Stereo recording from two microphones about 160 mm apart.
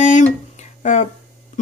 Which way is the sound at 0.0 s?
50° left (ahead or behind).